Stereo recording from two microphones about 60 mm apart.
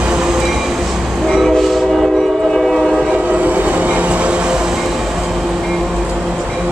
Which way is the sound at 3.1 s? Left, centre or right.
Right.